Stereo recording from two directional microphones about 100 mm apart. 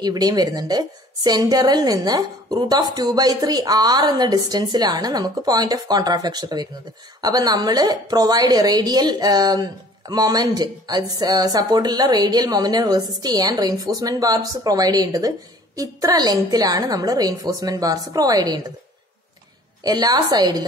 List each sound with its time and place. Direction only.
0.0 s a woman's voice: 40° right (ahead or behind)
19.8 s a woman's voice: 40° right (ahead or behind)